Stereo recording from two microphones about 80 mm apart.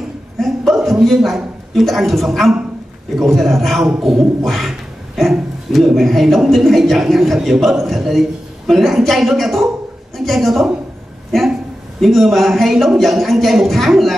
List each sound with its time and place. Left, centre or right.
0.8 s a man's voice: centre
12.0 s speech: centre